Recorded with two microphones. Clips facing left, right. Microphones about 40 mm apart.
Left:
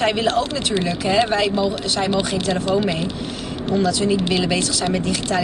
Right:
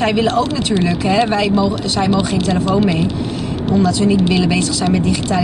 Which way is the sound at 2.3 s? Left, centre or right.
Right.